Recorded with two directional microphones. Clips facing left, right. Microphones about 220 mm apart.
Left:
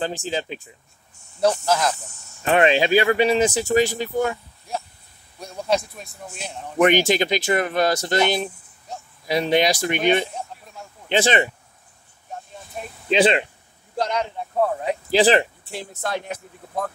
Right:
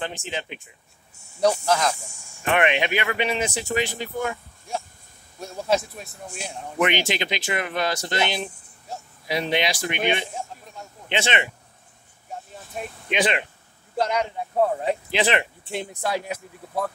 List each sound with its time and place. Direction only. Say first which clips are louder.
0.0 s speech: left 5 dB; 30° left (ahead or behind)
1.7 s speech: left 1 dB; 5° left (ahead or behind)
2.0 s speech: even; 10° right (ahead or behind)
2.4 s speech: left 4 dB; 30° left (ahead or behind)
5.4 s speech: left 1 dB; centre (ahead or behind)
6.8 s speech: left 6 dB; 40° left (ahead or behind)
13.1 s speech: left 6 dB; 25° left (ahead or behind)
13.9 s speech: even; 5° right (ahead or behind)
15.0 s speech: left 9 dB; 35° left (ahead or behind)
15.6 s speech: right 3 dB; 20° right (ahead or behind)
16.0 s speech: left 1 dB; 10° right (ahead or behind)